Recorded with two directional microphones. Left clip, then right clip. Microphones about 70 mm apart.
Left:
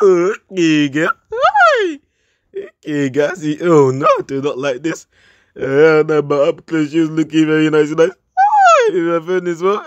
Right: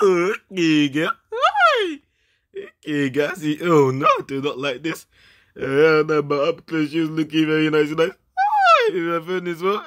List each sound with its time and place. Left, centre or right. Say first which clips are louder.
0.0 s a sound: left 6 dB; left
1.4 s plop: left 6 dB; left
2.5 s speech: left 4 dB; left